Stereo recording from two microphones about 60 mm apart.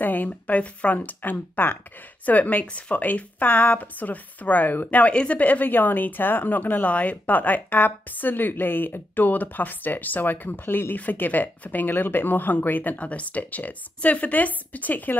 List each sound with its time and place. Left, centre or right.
0.0 s a woman's voice: left